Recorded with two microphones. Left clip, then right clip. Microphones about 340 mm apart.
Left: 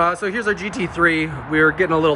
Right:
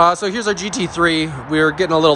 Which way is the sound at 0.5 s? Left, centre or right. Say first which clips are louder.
Right 2 dB; centre.